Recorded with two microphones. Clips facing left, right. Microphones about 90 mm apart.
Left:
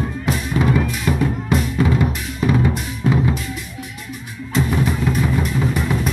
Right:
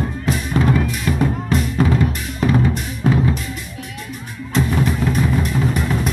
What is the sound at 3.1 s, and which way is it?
Music, 5° left (ahead or behind).